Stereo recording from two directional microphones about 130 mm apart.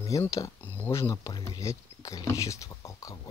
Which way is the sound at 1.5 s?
25° left (ahead or behind).